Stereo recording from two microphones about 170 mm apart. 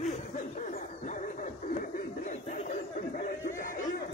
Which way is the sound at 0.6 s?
45° left (ahead or behind).